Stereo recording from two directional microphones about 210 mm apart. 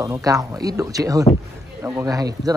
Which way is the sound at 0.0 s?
15° right (ahead or behind).